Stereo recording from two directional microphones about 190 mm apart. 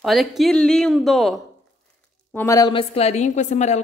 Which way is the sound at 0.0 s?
Centre (ahead or behind).